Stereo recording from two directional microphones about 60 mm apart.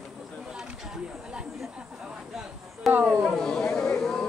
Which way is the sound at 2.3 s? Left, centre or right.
Centre.